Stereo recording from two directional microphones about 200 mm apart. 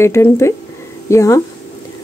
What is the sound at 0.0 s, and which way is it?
A woman's voice, 15° left (ahead or behind).